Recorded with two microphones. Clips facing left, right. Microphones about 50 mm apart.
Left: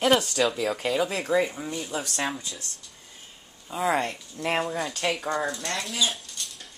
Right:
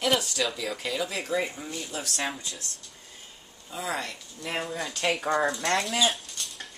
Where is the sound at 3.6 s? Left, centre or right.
Left.